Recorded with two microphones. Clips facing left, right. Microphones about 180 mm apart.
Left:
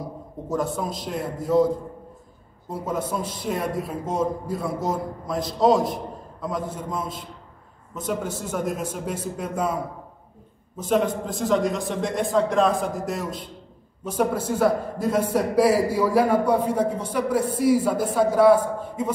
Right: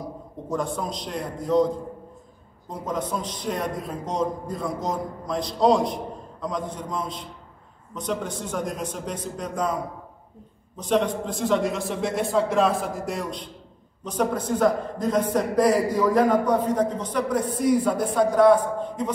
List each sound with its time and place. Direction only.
0.5 s a man's voice: 5° left (ahead or behind)
2.7 s a man's voice: 5° left (ahead or behind)
10.8 s a man's voice: 5° left (ahead or behind)